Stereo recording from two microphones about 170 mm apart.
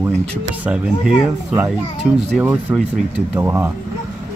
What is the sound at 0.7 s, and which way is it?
Speech, 5° right (ahead or behind).